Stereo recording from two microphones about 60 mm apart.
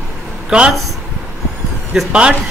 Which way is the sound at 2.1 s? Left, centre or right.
Centre.